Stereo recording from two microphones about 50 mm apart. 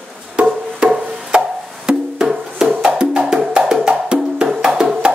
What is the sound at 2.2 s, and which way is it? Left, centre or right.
Music, centre.